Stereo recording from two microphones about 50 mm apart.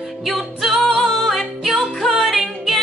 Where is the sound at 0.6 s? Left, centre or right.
Centre.